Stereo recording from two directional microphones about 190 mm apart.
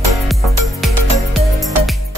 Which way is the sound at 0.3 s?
Centre (ahead or behind).